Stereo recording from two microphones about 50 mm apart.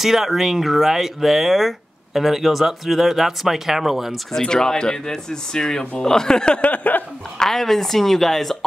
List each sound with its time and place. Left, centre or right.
0.0 s speech: centre
4.3 s speech: centre
6.7 s a sound: left
7.3 s speech: centre